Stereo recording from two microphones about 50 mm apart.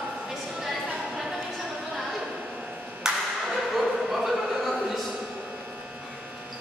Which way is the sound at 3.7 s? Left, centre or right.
Centre.